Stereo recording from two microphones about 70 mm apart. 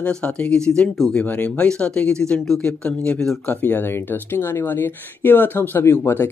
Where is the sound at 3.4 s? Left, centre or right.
Left.